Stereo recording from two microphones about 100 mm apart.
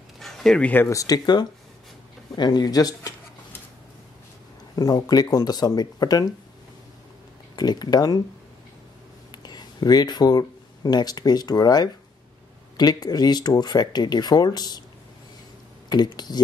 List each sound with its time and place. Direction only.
0.2 s a sound: 5° left (ahead or behind)
0.8 s speech: 35° left (ahead or behind)
4.7 s speech: 40° left (ahead or behind)
7.5 s speech: 45° left (ahead or behind)
9.4 s speech: 45° left (ahead or behind)
15.9 s speech: 45° left (ahead or behind)